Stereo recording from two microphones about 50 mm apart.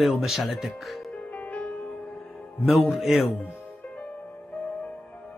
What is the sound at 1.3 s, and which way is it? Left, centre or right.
Music, left.